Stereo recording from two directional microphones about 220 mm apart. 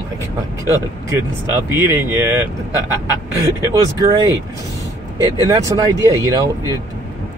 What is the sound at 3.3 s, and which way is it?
Speech, 15° right (ahead or behind).